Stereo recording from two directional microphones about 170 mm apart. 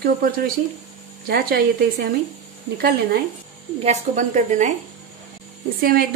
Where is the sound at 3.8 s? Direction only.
45° right (ahead or behind).